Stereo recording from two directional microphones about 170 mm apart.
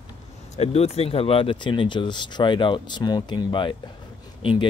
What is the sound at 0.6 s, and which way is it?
Speech, 35° left (ahead or behind).